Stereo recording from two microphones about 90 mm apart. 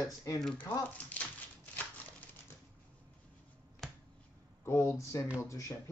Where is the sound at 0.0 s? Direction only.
40° left (ahead or behind).